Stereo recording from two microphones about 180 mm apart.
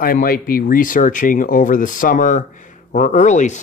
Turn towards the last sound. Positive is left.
turn(degrees=40)  # may be behind; listen again after turning